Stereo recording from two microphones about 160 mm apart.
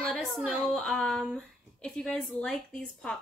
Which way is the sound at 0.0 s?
5° left (ahead or behind).